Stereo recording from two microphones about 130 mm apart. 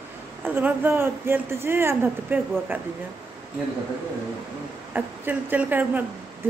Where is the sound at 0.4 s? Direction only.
15° right (ahead or behind).